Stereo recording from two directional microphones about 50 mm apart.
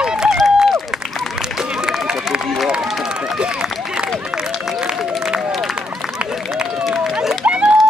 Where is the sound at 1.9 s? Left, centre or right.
Right.